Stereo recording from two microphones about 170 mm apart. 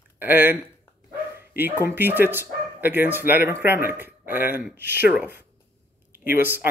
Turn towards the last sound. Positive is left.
turn(degrees=-10)  # may be behind; listen again after turning